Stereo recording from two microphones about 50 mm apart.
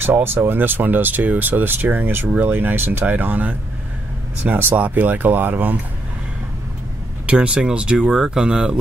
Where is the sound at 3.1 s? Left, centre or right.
Right.